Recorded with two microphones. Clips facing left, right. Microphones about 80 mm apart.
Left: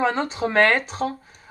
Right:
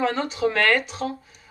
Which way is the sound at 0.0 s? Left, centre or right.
Left.